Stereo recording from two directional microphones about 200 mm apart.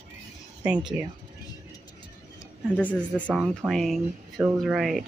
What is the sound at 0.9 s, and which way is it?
Speech, 5° right (ahead or behind).